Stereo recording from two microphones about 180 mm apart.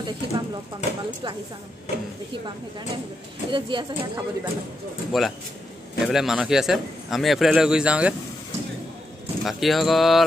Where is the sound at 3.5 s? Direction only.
25° right (ahead or behind).